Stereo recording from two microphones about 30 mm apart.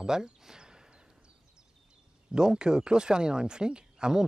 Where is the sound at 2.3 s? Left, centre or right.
Right.